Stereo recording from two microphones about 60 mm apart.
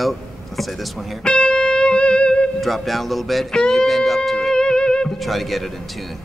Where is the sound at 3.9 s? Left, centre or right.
Centre.